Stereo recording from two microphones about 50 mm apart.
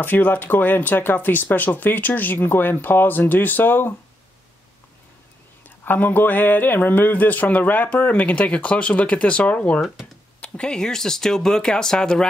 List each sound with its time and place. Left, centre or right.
0.0 s speech: left
5.9 s speech: left
9.8 s speech: centre
10.4 s speech: left